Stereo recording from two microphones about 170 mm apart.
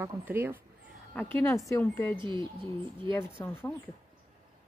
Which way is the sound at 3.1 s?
15° left (ahead or behind).